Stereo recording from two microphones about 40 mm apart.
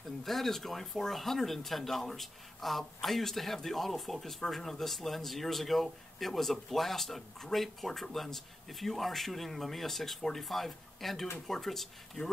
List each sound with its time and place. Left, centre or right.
0.2 s speech: centre